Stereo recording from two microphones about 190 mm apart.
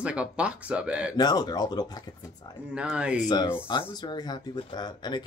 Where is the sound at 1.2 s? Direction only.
20° left (ahead or behind).